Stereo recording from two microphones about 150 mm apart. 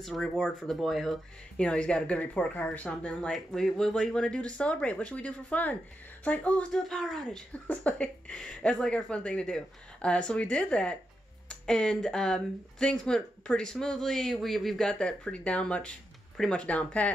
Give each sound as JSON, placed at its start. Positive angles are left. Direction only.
{"t": 0.0, "sound": "speech", "side_deg": 5}